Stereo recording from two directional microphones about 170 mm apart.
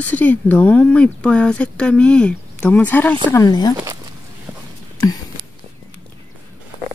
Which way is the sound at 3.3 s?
20° left (ahead or behind).